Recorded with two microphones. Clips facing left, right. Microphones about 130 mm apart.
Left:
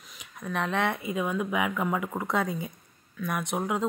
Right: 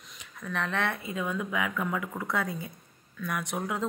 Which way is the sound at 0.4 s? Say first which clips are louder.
Left 3 dB; 20° left (ahead or behind).